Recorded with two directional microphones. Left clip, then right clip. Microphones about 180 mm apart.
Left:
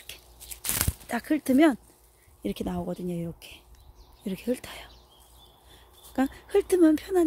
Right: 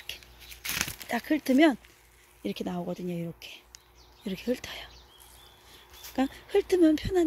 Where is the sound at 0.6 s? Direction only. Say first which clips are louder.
Right 1 dB; 50° left (ahead or behind).